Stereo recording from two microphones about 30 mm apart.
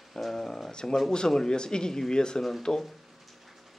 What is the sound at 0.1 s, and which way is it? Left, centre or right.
A man's voice, centre.